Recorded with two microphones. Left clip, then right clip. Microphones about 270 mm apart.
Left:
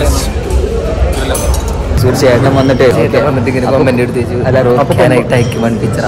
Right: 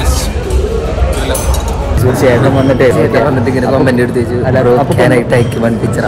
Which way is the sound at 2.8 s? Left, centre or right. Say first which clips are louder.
Even; centre.